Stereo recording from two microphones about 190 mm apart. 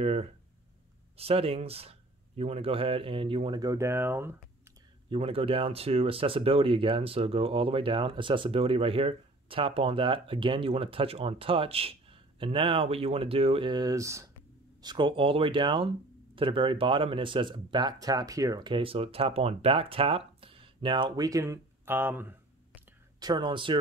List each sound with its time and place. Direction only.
0.0 s speech: 35° right (ahead or behind); by 4.4 s 10° right (ahead or behind)
5.1 s speech: 30° right (ahead or behind); by 22.3 s 10° right (ahead or behind)
23.1 s speech: 20° right (ahead or behind)